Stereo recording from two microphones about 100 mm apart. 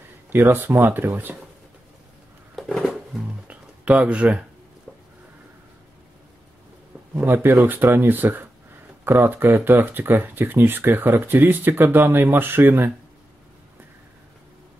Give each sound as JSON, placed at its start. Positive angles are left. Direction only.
{"t": 0.3, "sound": "speech", "side_deg": -20}
{"t": 2.5, "sound": "a sound", "side_deg": 0}
{"t": 7.2, "sound": "speech", "side_deg": -25}